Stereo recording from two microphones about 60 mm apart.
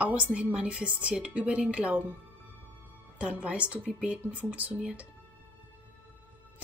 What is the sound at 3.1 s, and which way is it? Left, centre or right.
A woman's voice, right.